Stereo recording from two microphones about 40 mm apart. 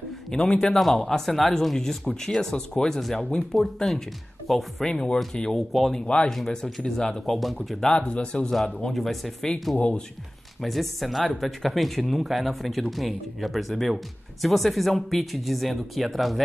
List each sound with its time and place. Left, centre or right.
0.3 s speech: centre
4.8 s speech: centre
5.7 s speech: centre
6.0 s speech: left
6.3 s speech: centre
7.2 s speech: centre
7.9 s speech: left
8.6 s speech: centre
8.9 s speech: centre
10.6 s speech: centre